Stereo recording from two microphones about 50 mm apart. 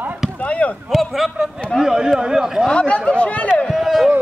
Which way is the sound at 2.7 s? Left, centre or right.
Left.